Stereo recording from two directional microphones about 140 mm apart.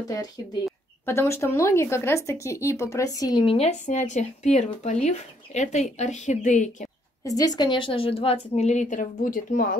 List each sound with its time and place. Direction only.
0.0 s speech: 25° left (ahead or behind)
3.4 s a woman's voice: 45° left (ahead or behind)
3.8 s speech: 60° left (ahead or behind)
7.2 s a woman's voice: 25° left (ahead or behind); by 9.8 s 85° left